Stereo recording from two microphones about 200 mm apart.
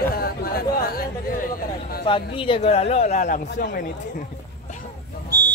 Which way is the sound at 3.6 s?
45° left (ahead or behind).